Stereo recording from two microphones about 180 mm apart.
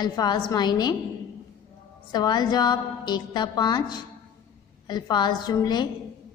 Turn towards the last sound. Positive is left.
turn(degrees=25)  # may be behind; listen again after turning